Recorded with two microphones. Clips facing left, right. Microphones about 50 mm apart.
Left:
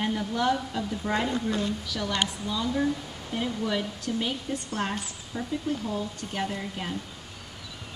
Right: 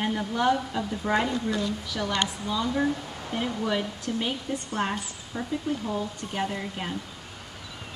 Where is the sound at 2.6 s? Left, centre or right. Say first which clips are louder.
Even; right.